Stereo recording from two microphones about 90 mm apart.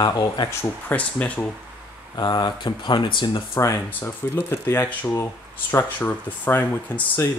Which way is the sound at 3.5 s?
30° left (ahead or behind).